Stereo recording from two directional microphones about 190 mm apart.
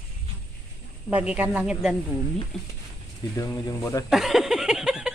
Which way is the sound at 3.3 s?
15° left (ahead or behind).